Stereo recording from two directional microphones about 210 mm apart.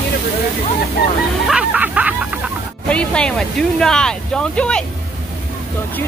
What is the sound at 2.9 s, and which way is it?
Speech, 5° left (ahead or behind).